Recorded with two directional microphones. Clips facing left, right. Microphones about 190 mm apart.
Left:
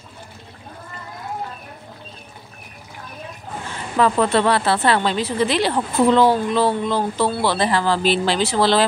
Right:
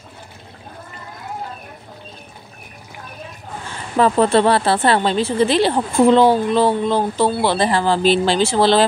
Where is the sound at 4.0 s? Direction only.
30° right (ahead or behind).